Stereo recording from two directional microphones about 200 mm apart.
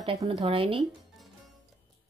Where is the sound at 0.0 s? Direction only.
25° right (ahead or behind).